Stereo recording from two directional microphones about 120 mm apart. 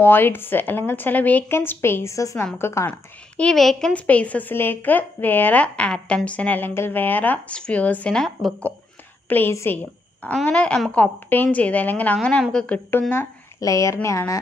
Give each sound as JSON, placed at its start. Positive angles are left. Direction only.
{"t": 0.0, "sound": "speech", "side_deg": 15}
{"t": 2.9, "sound": "a woman's voice", "side_deg": 10}
{"t": 9.3, "sound": "speech", "side_deg": 20}
{"t": 13.1, "sound": "speech", "side_deg": 25}